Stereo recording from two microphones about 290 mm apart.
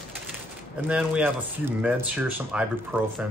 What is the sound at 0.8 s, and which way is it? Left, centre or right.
Speech, centre.